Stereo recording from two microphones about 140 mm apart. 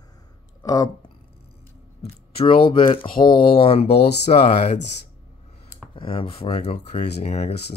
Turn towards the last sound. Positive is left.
turn(degrees=50)  # may be behind; listen again after turning